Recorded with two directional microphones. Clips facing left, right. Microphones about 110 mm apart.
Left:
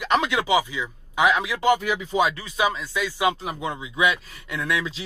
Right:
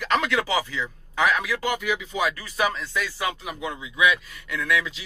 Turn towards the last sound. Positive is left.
turn(degrees=25)  # may be behind; listen again after turning